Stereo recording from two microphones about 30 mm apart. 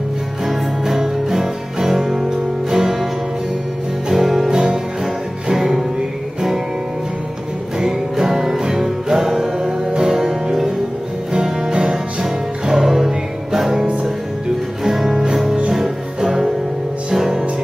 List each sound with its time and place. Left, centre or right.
0.5 s music: centre
4.1 s music: centre
4.5 s music: right
5.5 s music: centre
7.8 s music: centre
11.3 s music: right
12.7 s music: centre